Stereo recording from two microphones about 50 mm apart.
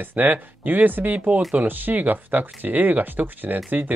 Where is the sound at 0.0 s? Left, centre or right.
Right.